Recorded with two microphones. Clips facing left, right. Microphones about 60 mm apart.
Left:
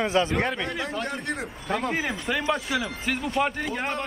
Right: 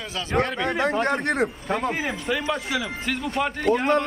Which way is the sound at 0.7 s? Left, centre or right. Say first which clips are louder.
Right 7 dB; right.